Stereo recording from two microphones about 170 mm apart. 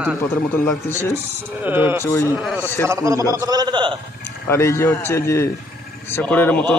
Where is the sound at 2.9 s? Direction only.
20° right (ahead or behind).